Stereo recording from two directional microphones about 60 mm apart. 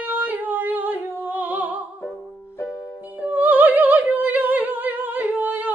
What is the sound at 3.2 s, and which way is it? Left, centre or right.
Opera, right.